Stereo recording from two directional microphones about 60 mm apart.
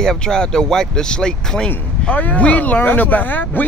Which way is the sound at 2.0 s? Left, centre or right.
Left.